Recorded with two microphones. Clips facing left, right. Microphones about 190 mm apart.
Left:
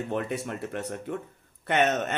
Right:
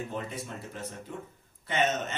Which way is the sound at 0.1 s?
65° left (ahead or behind).